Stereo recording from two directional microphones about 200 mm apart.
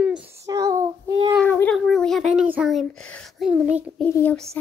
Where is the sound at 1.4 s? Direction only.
5° left (ahead or behind).